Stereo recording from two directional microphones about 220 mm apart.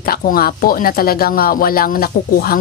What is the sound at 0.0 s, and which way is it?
A woman's voice, 40° left (ahead or behind).